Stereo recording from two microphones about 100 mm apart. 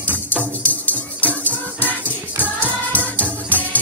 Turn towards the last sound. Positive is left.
turn(degrees=15)  # may be behind; listen again after turning